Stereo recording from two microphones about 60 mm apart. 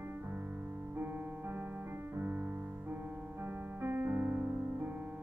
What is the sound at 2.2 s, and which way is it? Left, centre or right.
Music, right.